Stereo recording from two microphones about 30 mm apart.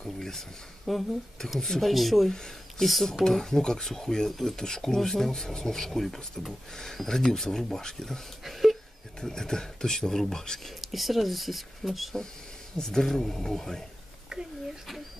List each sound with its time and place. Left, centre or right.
0.0 s speech: centre
0.9 s speech: centre
3.3 s speech: centre
4.3 s speech: centre
4.6 s speech: centre
5.9 s speech: centre
8.5 s a sound: centre
9.2 s speech: centre
10.8 s speech: centre
12.7 s speech: centre
14.3 s a sound: right